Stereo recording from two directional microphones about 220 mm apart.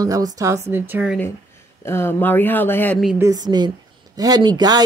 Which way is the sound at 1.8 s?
10° left (ahead or behind).